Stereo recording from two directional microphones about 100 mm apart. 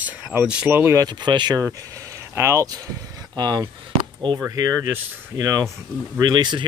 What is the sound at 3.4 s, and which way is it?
Speech, 45° right (ahead or behind).